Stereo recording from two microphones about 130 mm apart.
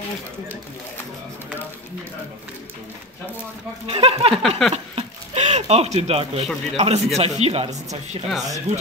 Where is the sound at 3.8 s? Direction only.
50° right (ahead or behind).